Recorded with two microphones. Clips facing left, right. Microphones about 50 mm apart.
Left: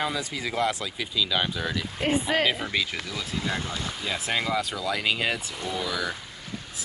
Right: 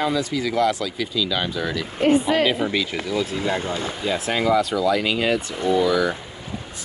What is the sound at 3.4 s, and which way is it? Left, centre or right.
Speech, right.